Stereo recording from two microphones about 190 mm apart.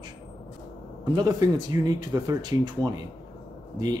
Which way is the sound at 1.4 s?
20° right (ahead or behind).